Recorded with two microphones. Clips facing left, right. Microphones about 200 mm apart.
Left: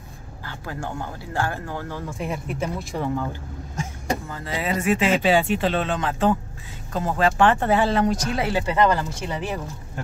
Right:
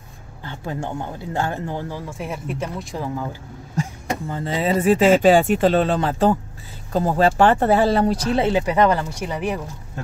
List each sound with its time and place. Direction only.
0.5 s speech: 20° right (ahead or behind)
2.1 s speech: centre (ahead or behind)
4.3 s speech: 25° right (ahead or behind)